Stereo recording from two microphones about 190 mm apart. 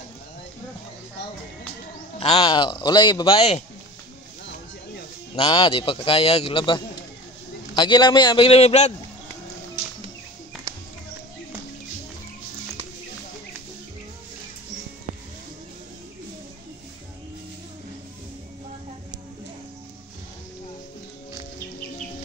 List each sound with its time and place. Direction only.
2.1 s a man's voice: 30° left (ahead or behind)
5.3 s a man's voice: 25° left (ahead or behind)